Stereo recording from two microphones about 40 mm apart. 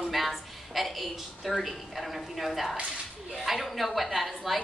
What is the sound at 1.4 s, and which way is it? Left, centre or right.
A woman's voice, centre.